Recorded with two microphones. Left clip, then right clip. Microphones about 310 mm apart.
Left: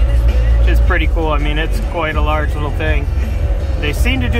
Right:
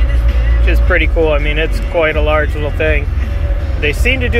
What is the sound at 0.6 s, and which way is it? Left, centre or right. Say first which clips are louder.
Speech: right 5 dB; centre.